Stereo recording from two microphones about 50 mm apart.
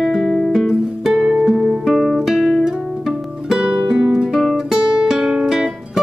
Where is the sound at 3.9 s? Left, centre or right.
Centre.